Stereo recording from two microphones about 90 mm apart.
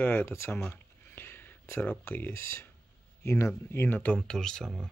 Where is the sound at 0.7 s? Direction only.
25° left (ahead or behind).